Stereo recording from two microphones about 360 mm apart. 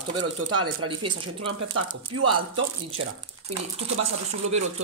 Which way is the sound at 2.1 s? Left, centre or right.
Right.